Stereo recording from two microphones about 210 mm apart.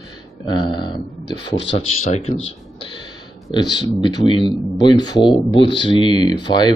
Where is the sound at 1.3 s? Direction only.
55° left (ahead or behind).